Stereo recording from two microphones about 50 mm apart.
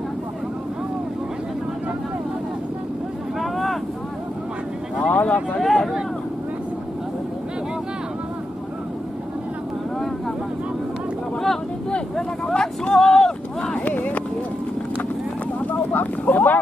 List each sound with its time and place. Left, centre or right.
3.3 s boat: centre
5.0 s speech: left
5.6 s speech: centre
12.2 s vehicle: centre
13.7 s run: left
15.9 s a sound: left